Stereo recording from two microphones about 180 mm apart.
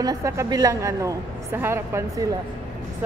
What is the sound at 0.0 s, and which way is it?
A woman's voice, 20° right (ahead or behind).